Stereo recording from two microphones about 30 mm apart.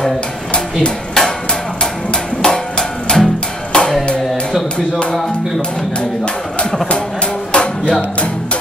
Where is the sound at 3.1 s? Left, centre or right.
Left.